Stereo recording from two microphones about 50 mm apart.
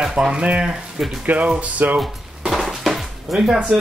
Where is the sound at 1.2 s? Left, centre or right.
Right.